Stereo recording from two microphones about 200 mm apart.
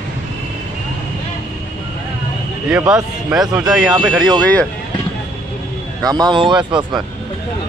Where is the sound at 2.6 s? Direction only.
5° right (ahead or behind).